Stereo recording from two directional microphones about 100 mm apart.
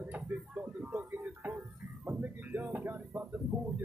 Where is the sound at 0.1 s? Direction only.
15° right (ahead or behind).